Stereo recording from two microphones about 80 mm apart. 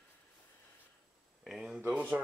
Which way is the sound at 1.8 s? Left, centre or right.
Centre.